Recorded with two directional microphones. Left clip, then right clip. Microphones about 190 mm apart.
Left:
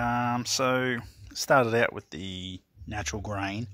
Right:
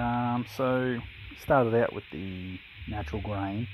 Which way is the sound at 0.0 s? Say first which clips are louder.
Left 2 dB; 25° left (ahead or behind).